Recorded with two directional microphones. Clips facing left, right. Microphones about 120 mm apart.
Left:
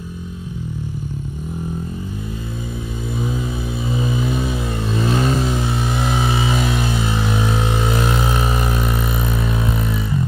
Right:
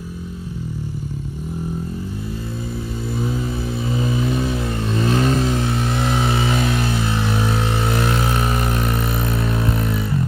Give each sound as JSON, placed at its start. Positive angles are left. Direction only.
{"t": 3.3, "sound": "vehicle", "side_deg": 0}
{"t": 9.4, "sound": "vehicle", "side_deg": 0}